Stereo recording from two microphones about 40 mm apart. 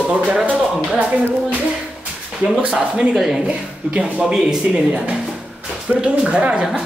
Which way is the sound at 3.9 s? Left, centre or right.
Right.